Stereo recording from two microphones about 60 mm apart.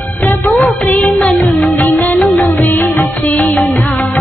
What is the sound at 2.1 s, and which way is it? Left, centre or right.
Music, centre.